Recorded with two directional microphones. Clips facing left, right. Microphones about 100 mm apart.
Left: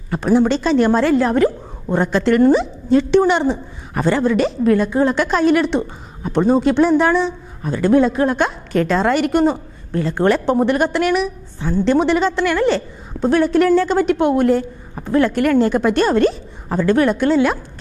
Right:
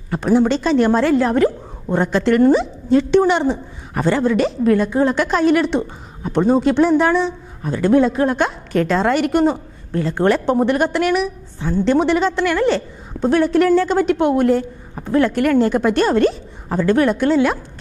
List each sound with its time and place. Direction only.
0.1 s a woman's voice: 20° left (ahead or behind)